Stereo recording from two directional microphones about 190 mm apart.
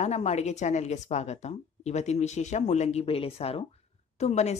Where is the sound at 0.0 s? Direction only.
35° left (ahead or behind).